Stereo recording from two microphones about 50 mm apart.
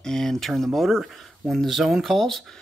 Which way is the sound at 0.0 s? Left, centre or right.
Centre.